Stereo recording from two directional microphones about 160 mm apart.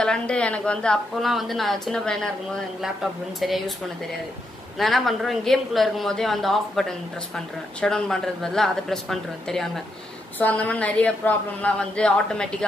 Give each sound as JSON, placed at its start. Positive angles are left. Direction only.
{"t": 0.0, "sound": "speech", "side_deg": 5}
{"t": 4.7, "sound": "a woman's voice", "side_deg": 0}